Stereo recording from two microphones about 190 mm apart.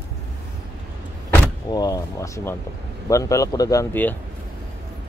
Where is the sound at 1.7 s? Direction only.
20° left (ahead or behind).